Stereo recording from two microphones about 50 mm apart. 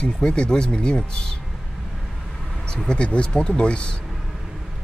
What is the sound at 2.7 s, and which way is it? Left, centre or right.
Speech, centre.